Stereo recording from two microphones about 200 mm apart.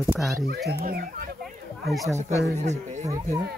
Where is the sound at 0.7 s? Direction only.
55° right (ahead or behind).